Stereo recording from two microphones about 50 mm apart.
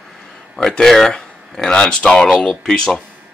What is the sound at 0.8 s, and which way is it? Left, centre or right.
Speech, centre.